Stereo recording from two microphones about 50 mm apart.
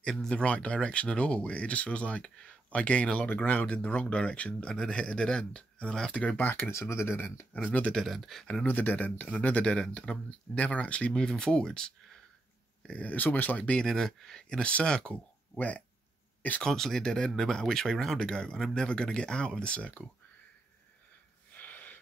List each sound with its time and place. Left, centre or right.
0.0 s speech: centre
6.3 s speech: left
6.7 s speech: left
7.2 s speech: left
7.9 s speech: centre
8.6 s speech: left; by 12.2 s centre
12.8 s speech: left
13.7 s speech: centre
14.6 s speech: left
16.6 s speech: centre; by 20.0 s left
21.5 s gasp: left